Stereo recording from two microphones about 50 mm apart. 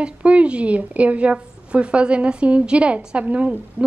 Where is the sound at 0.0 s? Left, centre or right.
Right.